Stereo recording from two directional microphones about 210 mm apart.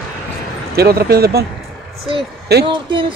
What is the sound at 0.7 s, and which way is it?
Speech, 45° right (ahead or behind).